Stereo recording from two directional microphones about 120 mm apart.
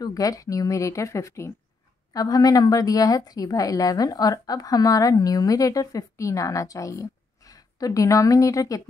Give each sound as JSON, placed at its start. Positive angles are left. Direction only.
{"t": 0.0, "sound": "a woman's voice", "side_deg": 30}